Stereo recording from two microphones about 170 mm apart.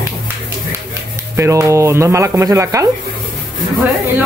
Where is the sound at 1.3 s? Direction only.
15° right (ahead or behind).